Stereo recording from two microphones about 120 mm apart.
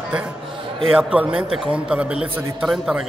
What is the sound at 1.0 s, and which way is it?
A man's voice, 10° right (ahead or behind).